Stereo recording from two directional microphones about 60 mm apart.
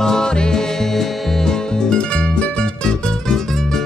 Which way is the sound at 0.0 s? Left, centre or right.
Centre.